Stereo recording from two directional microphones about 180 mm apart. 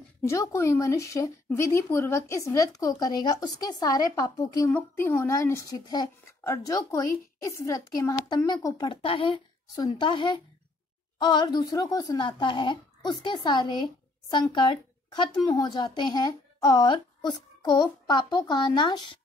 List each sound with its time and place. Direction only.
0.2 s speech: 15° left (ahead or behind)